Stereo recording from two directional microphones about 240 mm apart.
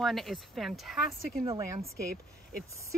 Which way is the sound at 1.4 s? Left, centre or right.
Centre.